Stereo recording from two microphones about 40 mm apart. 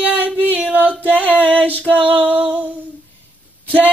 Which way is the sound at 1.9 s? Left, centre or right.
Right.